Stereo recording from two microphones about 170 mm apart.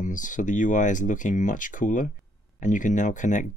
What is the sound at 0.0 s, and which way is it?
Speech, 50° left (ahead or behind).